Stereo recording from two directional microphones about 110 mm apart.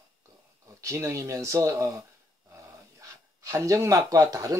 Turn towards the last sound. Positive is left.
turn(degrees=-30)  # may be behind; listen again after turning